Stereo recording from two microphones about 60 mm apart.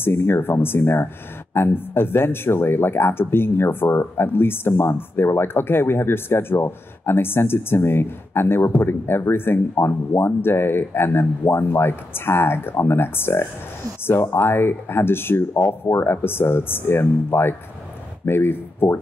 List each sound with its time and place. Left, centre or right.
0.0 s a man's voice: left